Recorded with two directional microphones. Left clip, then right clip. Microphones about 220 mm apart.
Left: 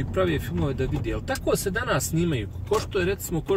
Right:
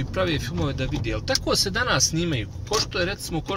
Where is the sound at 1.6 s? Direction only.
30° right (ahead or behind).